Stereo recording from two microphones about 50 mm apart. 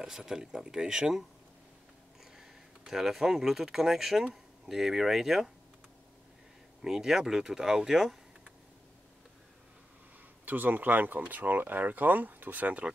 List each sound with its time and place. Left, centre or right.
0.0 s speech: centre
2.9 s speech: centre
6.8 s speech: centre
10.4 s speech: right